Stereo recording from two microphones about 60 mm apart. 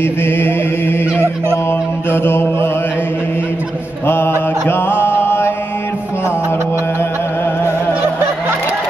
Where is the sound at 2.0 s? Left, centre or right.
Left.